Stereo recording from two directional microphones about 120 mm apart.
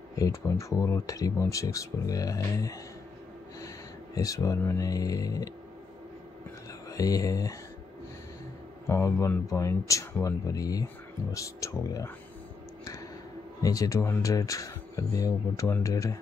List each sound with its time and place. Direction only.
0.2 s speech: 25° left (ahead or behind)
6.9 s speech: 30° left (ahead or behind)
8.8 s speech: 25° left (ahead or behind)
13.6 s speech: 30° left (ahead or behind)